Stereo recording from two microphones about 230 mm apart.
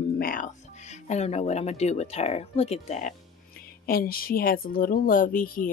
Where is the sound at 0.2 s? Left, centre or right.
Left.